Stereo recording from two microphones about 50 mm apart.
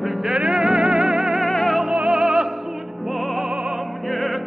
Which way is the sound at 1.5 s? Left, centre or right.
Centre.